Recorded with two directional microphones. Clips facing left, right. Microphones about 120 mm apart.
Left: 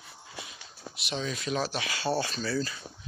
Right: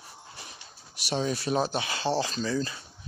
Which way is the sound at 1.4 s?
30° right (ahead or behind).